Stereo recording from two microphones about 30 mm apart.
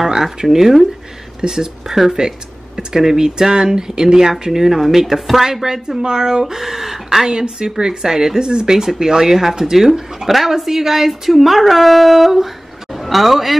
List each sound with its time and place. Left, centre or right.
0.4 s speech: centre
5.9 s speech: right
6.4 s speech: centre